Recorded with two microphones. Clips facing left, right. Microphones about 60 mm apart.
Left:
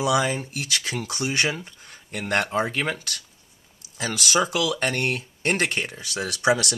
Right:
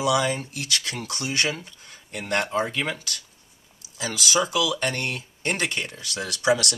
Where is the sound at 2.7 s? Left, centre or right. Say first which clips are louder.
Left 1 dB; left.